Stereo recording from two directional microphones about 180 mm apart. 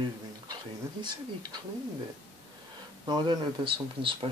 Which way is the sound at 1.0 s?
25° right (ahead or behind).